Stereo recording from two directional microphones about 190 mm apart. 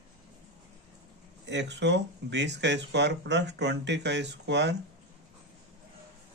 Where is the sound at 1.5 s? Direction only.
65° right (ahead or behind).